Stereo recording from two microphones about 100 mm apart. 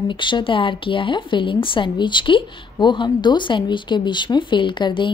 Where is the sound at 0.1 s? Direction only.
55° left (ahead or behind).